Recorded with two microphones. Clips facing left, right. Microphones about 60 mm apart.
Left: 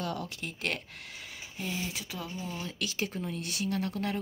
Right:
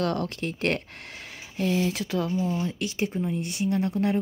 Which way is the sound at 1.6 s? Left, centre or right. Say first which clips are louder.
Right 11 dB; right.